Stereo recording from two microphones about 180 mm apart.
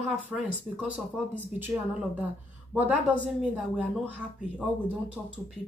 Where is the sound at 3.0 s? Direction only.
10° right (ahead or behind).